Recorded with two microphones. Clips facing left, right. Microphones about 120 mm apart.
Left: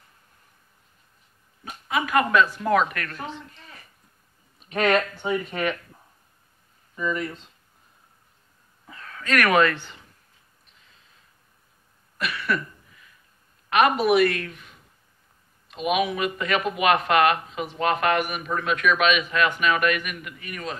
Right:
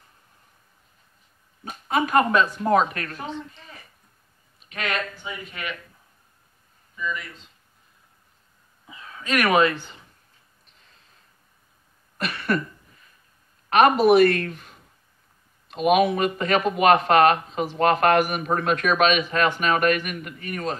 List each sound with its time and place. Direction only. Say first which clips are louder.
1.6 s speech: right 3 dB; 35° right (ahead or behind)
4.6 s speech: left 7 dB; 40° left (ahead or behind)
7.0 s speech: left 4 dB; 45° left (ahead or behind)
8.8 s a sound: even; 15° right (ahead or behind)
12.2 s a sound: right 2 dB; 40° right (ahead or behind)
13.7 s a woman's voice: right 3 dB; 40° right (ahead or behind)